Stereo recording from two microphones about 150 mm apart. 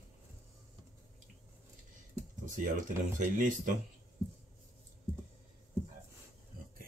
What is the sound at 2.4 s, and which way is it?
Speech, 60° right (ahead or behind).